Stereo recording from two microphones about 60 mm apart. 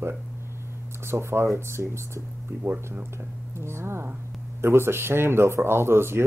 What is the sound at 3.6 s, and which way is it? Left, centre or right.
Speech, right.